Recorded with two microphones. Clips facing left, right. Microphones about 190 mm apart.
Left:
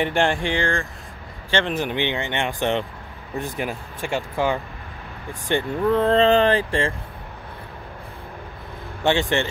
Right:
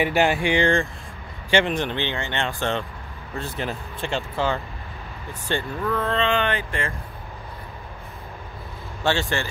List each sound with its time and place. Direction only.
0.0 s speech: 5° right (ahead or behind)
1.7 s speech: 10° left (ahead or behind)
5.9 s speech: 35° left (ahead or behind)
9.0 s speech: 20° left (ahead or behind)